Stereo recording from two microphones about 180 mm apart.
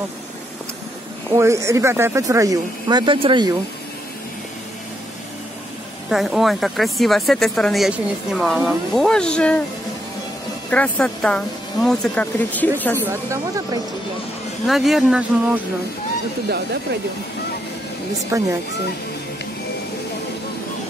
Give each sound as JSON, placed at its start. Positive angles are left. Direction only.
{"t": 1.3, "sound": "speech", "side_deg": -15}
{"t": 6.0, "sound": "speech", "side_deg": 0}
{"t": 10.7, "sound": "speech", "side_deg": 5}
{"t": 13.0, "sound": "speech", "side_deg": -15}
{"t": 14.7, "sound": "speech", "side_deg": 0}
{"t": 18.3, "sound": "speech", "side_deg": -15}